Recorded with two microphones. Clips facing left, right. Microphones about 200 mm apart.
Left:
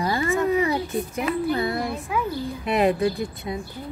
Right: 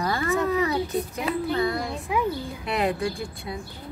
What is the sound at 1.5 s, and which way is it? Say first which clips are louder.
Speech: left 1 dB; 30° left (ahead or behind).